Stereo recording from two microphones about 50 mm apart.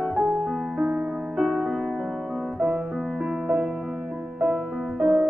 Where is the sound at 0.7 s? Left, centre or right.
Centre.